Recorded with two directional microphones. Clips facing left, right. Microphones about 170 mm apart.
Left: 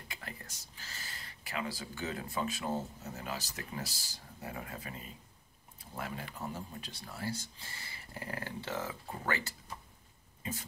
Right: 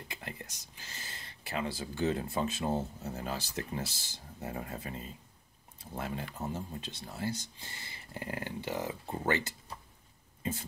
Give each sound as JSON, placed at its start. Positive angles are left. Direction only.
{"t": 0.1, "sound": "speech", "side_deg": -25}
{"t": 9.1, "sound": "speech", "side_deg": -25}